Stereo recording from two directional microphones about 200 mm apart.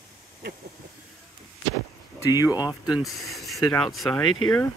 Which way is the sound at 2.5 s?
5° right (ahead or behind).